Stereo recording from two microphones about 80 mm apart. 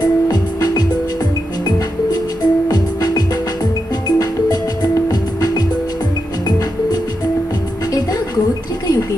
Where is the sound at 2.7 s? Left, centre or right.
Left.